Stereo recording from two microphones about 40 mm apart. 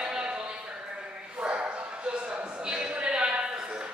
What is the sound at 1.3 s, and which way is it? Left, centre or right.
Bow-wow, right.